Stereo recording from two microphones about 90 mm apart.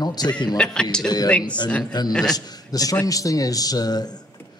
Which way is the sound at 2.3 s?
45° left (ahead or behind).